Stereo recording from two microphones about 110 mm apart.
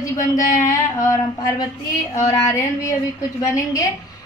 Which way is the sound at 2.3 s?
30° left (ahead or behind).